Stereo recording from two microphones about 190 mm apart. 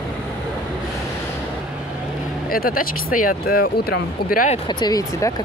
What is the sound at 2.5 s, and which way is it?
Speech, 50° left (ahead or behind).